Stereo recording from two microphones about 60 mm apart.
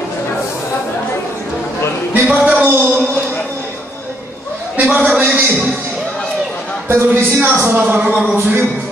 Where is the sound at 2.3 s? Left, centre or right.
Centre.